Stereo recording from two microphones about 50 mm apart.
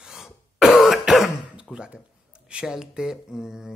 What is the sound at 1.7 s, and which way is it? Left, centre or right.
Speech, centre.